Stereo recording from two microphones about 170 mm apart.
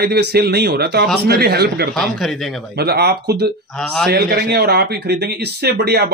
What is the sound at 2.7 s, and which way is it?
Speech, 70° right (ahead or behind).